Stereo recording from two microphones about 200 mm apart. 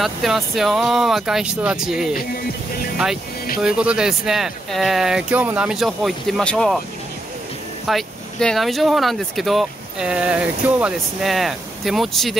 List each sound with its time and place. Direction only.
0.0 s speech: centre (ahead or behind)
3.6 s speech: 5° right (ahead or behind)
7.8 s speech: centre (ahead or behind)